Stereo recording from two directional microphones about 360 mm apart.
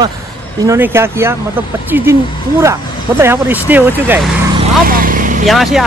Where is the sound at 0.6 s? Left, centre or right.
Centre.